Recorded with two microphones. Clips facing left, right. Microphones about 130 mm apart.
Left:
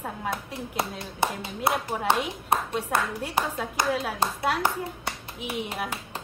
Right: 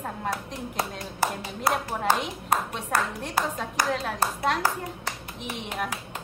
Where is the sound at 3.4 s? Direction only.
20° left (ahead or behind).